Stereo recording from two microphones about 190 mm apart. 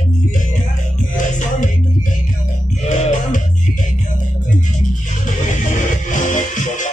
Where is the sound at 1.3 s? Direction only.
40° left (ahead or behind).